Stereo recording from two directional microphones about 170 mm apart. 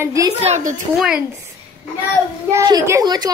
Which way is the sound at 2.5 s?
20° right (ahead or behind).